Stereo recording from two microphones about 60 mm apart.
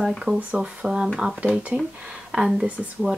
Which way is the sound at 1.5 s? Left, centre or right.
Right.